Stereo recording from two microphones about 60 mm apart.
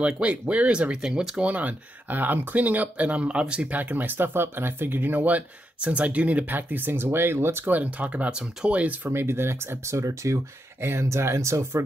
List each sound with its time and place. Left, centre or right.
0.2 s speech: right
3.7 s speech: right
7.7 s speech: right
9.1 s speech: right